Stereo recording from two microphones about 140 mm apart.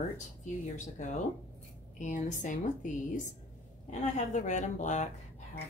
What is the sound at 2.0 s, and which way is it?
A woman's voice, 60° left (ahead or behind).